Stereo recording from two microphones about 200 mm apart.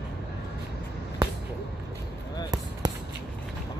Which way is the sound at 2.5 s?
20° right (ahead or behind).